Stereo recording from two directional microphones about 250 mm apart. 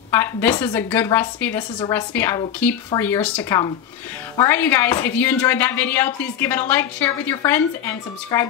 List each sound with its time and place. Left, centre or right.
0.1 s a woman's voice: centre